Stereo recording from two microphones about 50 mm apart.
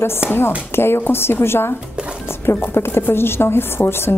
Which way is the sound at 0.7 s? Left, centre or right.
Left.